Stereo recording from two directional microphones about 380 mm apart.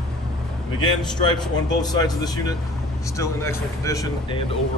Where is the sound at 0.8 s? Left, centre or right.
Centre.